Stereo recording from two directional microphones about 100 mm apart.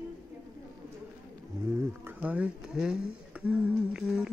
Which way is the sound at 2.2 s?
10° right (ahead or behind).